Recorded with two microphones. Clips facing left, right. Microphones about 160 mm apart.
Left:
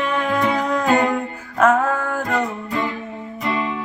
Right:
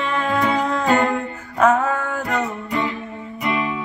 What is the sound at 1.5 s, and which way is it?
Female singing, 5° left (ahead or behind).